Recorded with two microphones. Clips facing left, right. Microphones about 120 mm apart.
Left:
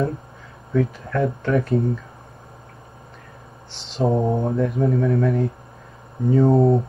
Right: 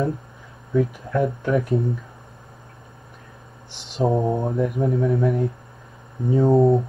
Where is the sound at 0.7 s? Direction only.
15° right (ahead or behind).